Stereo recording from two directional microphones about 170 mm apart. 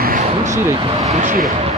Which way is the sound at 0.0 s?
55° right (ahead or behind).